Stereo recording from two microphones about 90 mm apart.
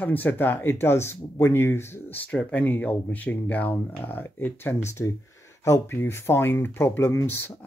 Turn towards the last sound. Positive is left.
turn(degrees=25)  # may be behind; listen again after turning